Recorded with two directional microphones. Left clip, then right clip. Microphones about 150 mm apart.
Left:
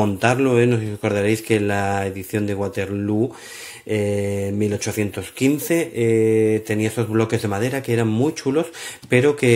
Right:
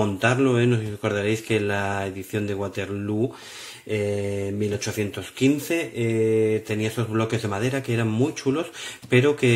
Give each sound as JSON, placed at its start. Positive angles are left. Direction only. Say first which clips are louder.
{"t": 0.0, "sound": "speech", "louder": "left 3 dB", "side_deg": 35}